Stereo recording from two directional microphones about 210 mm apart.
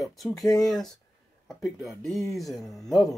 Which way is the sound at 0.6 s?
Centre (ahead or behind).